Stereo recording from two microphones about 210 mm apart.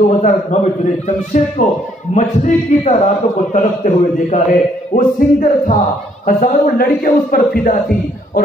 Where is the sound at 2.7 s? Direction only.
40° left (ahead or behind).